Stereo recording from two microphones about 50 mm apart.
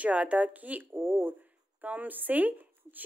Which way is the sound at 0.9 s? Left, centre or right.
Right.